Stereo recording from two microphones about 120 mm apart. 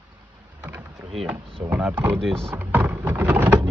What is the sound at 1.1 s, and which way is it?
Speech, 5° right (ahead or behind).